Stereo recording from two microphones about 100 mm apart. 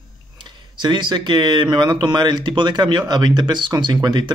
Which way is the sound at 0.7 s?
50° right (ahead or behind).